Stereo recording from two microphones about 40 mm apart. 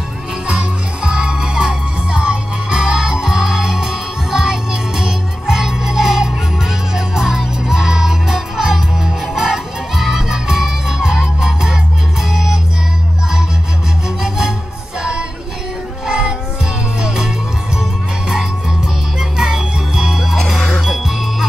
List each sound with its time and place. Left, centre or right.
0.5 s music: right
16.1 s music: right
19.1 s music: centre